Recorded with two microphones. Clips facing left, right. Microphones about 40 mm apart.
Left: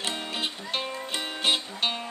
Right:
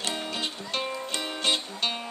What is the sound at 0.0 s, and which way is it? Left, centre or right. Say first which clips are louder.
Music: even; centre.